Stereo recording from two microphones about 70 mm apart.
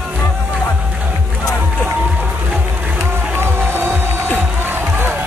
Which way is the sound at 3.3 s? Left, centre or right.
Right.